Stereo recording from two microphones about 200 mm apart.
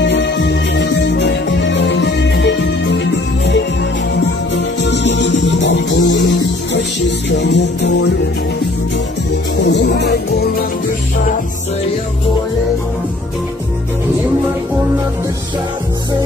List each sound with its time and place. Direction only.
0.0 s music: 60° left (ahead or behind)
4.7 s music: 60° left (ahead or behind)
9.7 s music: 60° left (ahead or behind)